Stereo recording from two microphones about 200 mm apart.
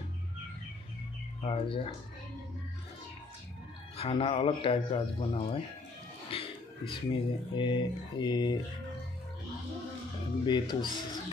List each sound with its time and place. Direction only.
1.4 s speech: 30° left (ahead or behind)
3.9 s speech: 25° left (ahead or behind)
10.4 s speech: 20° left (ahead or behind)